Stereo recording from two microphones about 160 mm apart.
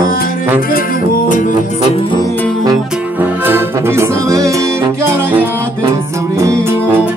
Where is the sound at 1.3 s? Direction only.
55° left (ahead or behind).